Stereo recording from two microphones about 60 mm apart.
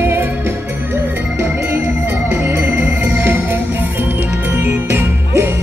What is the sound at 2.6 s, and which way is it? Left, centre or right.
Music, right.